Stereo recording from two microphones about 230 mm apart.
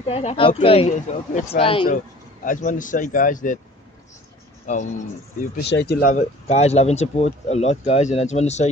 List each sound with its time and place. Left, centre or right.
0.0 s speech: left
2.4 s speech: left
4.7 s speech: left
5.7 s speech: left